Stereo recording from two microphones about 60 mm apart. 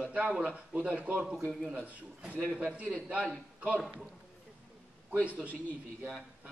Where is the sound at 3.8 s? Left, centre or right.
Centre.